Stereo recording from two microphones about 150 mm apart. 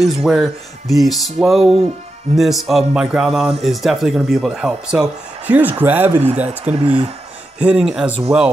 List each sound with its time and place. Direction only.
0.0 s speech: centre (ahead or behind)
6.8 s speech: 35° right (ahead or behind)
7.5 s speech: 5° right (ahead or behind)